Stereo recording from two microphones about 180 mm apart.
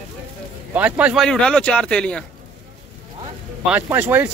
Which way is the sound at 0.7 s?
10° right (ahead or behind).